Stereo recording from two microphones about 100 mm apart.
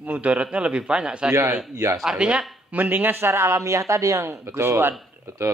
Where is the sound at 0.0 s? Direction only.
15° right (ahead or behind).